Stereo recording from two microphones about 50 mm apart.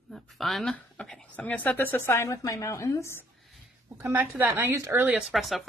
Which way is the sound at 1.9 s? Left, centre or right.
Left.